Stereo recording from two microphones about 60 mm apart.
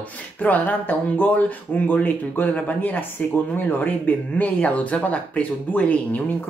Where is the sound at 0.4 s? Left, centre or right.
Left.